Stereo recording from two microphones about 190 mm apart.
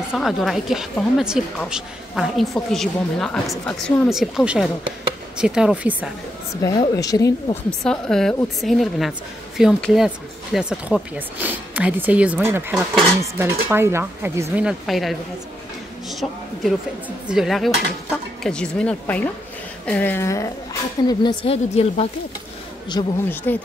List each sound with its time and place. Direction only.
0.1 s a woman's voice: centre (ahead or behind)
6.5 s a woman's voice: 20° left (ahead or behind)
7.8 s a woman's voice: 5° left (ahead or behind); by 22.0 s 30° left (ahead or behind)
23.0 s a woman's voice: 20° left (ahead or behind)
23.5 s a woman's voice: 10° left (ahead or behind)